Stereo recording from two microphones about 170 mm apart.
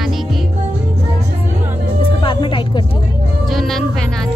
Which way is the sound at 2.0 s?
30° left (ahead or behind).